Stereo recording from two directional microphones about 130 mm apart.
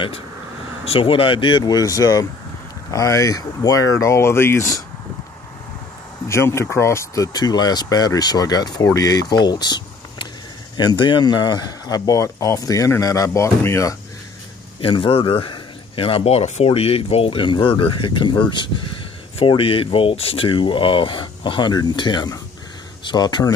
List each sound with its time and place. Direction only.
0.8 s speech: 45° left (ahead or behind); by 4.8 s 25° left (ahead or behind)
6.2 s speech: 20° left (ahead or behind)
7.3 s speech: 30° left (ahead or behind)
14.8 s a man's voice: 45° left (ahead or behind)